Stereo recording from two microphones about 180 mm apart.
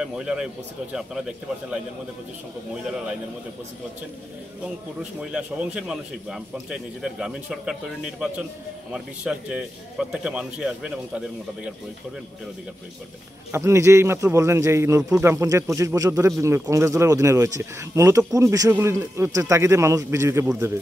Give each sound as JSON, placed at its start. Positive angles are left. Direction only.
{"t": 0.0, "sound": "a man's voice", "side_deg": -5}
{"t": 5.2, "sound": "a man's voice", "side_deg": -5}
{"t": 13.5, "sound": "a man's voice", "side_deg": -15}